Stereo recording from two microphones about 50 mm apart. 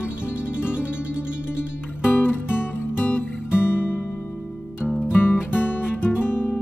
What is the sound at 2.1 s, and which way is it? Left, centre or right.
Music, left.